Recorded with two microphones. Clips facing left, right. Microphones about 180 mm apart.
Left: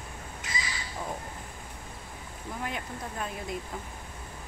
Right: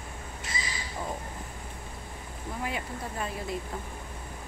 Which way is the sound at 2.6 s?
Centre (ahead or behind).